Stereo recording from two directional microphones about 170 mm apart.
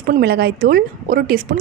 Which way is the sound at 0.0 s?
65° right (ahead or behind).